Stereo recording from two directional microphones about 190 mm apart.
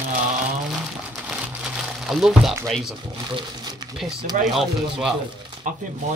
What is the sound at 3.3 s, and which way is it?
Speech, 20° right (ahead or behind).